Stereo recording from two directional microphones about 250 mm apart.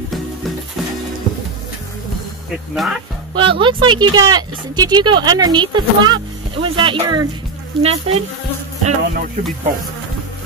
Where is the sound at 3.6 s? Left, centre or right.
Centre.